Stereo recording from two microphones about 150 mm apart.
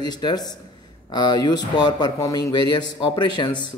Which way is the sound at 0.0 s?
30° left (ahead or behind).